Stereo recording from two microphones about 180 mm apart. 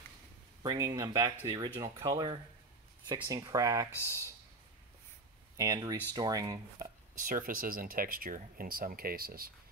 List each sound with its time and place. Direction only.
0.6 s speech: 20° right (ahead or behind)
3.9 s speech: 15° left (ahead or behind)
5.6 s speech: 20° right (ahead or behind)
7.2 s speech: 50° right (ahead or behind)